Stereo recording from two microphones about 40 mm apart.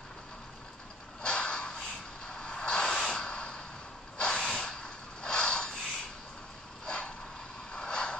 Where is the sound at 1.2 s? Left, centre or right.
Left.